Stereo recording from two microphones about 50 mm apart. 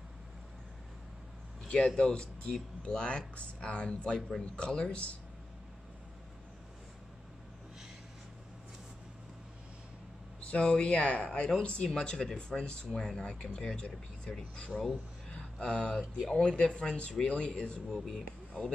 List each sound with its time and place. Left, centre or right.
1.7 s speech: left
10.4 s speech: left
14.7 s speech: centre
15.2 s a sound: centre
16.3 s speech: centre
17.8 s speech: centre